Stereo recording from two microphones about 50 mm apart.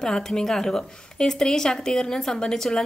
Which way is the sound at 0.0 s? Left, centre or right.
Centre.